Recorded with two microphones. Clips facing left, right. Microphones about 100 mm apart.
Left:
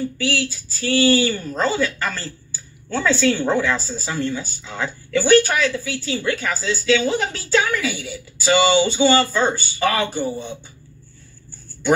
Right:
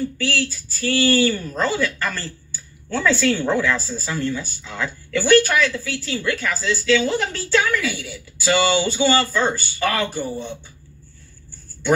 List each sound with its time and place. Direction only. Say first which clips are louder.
0.3 s speech: left 1 dB; 15° left (ahead or behind)
10.2 s speech: left 2 dB; 5° left (ahead or behind)